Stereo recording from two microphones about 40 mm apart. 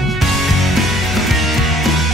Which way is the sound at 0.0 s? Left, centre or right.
Centre.